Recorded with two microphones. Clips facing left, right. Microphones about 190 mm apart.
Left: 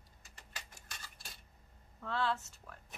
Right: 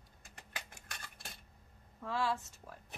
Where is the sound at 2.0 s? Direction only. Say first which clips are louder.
Even; 10° right (ahead or behind).